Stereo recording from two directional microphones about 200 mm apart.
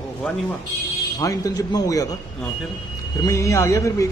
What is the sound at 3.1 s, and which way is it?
Speech, 15° left (ahead or behind).